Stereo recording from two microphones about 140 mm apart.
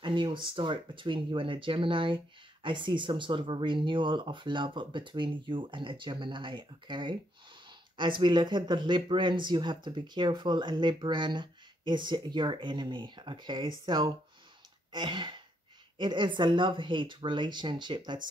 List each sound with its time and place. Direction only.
0.0 s speech: 35° right (ahead or behind)
14.9 s gasp: 35° right (ahead or behind)
16.0 s speech: 35° right (ahead or behind)